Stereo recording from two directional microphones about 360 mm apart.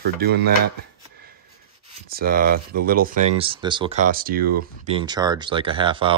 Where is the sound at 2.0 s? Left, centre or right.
Right.